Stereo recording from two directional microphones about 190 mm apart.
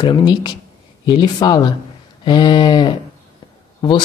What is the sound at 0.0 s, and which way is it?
Speech, 25° left (ahead or behind).